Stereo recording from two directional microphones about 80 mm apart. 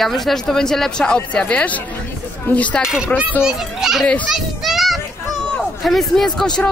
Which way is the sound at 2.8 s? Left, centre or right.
Centre.